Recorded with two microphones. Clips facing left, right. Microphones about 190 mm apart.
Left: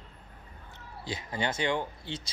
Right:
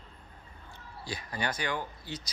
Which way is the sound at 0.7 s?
20° left (ahead or behind).